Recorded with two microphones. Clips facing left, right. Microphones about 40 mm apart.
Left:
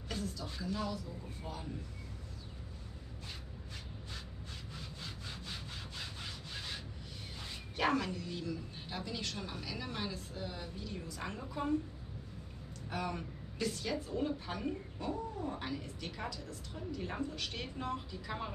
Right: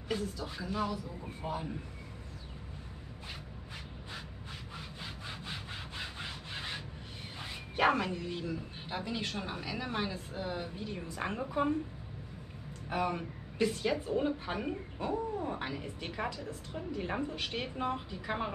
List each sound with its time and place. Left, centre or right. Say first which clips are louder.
0.1 s speech: right 5 dB; centre
3.3 s rub: right 4 dB; right
7.3 s speech: right 6 dB; right
12.9 s speech: right 6 dB; right